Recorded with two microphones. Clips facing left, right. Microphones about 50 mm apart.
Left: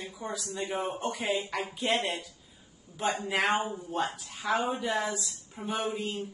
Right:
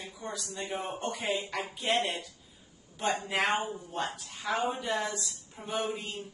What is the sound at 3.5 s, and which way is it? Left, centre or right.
Speech, left.